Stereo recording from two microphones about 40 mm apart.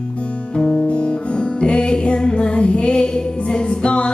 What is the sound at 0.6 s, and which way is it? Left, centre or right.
Music, centre.